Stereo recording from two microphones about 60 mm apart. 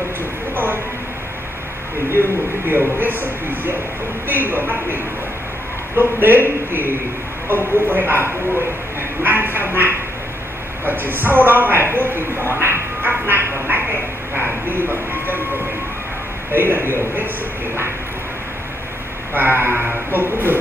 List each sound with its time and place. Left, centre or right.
2.0 s speech: right
13.7 s a sound: right
16.5 s speech: right
19.3 s speech: right